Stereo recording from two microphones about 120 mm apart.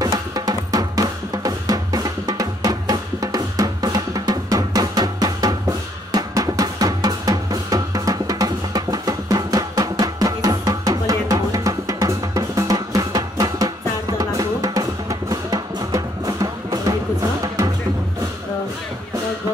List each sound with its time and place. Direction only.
0.0 s music: 30° right (ahead or behind)